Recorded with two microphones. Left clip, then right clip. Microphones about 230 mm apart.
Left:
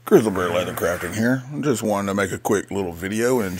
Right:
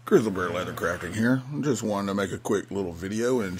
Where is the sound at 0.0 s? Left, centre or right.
Centre.